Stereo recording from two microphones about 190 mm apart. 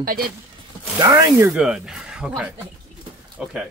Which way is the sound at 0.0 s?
50° right (ahead or behind).